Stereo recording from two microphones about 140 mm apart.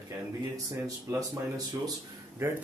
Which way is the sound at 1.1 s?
25° right (ahead or behind).